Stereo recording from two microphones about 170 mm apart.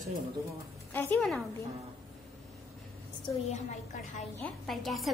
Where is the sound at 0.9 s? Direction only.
10° left (ahead or behind).